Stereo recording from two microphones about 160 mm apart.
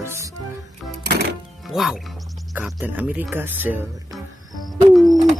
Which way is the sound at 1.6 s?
Centre (ahead or behind).